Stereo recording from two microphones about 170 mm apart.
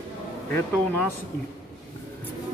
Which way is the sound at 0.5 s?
10° left (ahead or behind).